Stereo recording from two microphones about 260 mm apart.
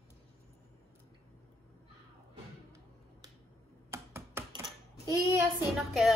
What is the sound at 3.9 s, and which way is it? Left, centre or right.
Computer keyboard, centre.